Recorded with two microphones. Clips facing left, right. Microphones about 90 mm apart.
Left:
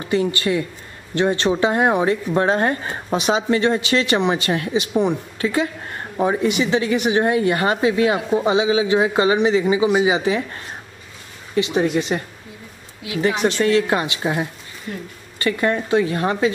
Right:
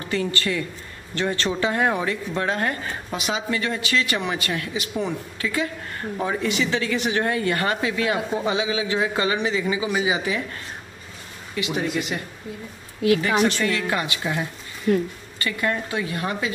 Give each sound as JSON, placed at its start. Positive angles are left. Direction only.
{"t": 0.0, "sound": "speech", "side_deg": 20}
{"t": 13.6, "sound": "speech", "side_deg": 25}